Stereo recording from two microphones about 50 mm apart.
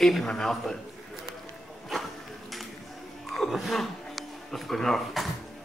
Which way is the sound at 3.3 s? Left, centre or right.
Centre.